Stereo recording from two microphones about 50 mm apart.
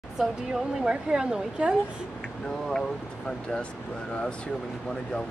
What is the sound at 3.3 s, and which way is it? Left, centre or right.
Speech, centre.